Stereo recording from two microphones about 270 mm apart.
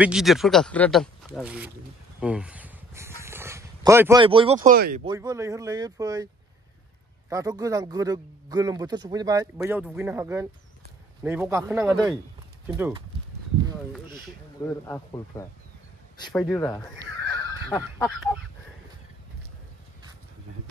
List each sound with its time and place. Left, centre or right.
0.0 s speech: centre
2.1 s a sound: centre
3.2 s dog: centre
4.7 s speech: right
5.0 s a man's voice: centre
7.2 s a man's voice: centre
9.6 s a man's voice: centre
14.7 s a man's voice: centre